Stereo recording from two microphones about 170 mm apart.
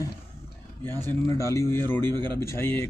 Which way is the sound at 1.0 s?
15° left (ahead or behind).